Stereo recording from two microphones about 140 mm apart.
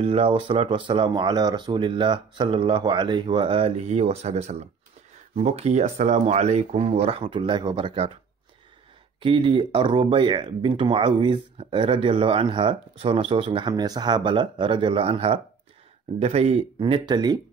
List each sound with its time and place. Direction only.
0.0 s speech: 40° right (ahead or behind)
9.2 s speech: 40° right (ahead or behind)
16.8 s speech: 35° right (ahead or behind)